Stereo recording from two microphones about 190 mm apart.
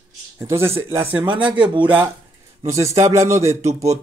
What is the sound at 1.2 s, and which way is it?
Speech, 25° right (ahead or behind).